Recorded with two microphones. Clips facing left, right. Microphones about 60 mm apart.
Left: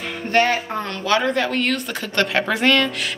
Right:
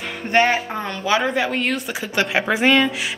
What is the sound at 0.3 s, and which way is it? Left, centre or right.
A woman's voice, centre.